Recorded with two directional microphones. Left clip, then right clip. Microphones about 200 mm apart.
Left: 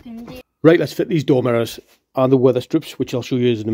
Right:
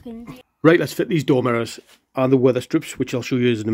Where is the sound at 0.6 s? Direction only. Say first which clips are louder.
Left 2 dB; 5° left (ahead or behind).